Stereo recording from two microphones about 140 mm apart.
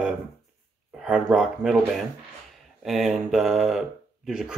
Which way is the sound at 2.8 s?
Centre (ahead or behind).